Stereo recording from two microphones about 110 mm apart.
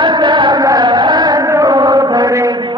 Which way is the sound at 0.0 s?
45° right (ahead or behind).